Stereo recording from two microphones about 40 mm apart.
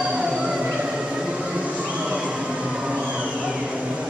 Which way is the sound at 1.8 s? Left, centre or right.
Right.